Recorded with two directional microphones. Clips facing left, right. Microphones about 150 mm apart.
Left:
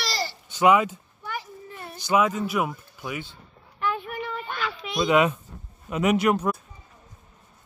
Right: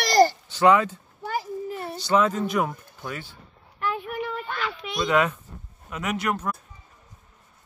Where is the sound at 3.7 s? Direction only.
5° right (ahead or behind).